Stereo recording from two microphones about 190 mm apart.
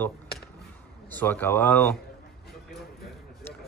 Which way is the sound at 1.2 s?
10° left (ahead or behind).